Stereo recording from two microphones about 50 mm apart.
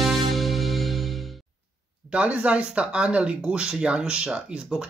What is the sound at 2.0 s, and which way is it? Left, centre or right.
Speech, right.